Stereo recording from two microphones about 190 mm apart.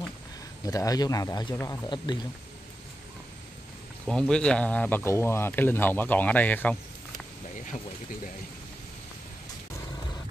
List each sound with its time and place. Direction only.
0.7 s speech: 20° left (ahead or behind)
4.1 s speech: 5° left (ahead or behind)